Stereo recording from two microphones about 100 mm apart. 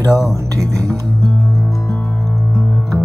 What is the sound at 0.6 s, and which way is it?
Music, 35° right (ahead or behind).